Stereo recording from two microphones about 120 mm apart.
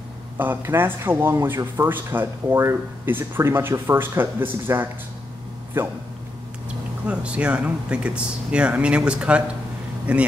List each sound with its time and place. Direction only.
0.4 s speech: 20° right (ahead or behind)
7.1 s speech: 10° right (ahead or behind)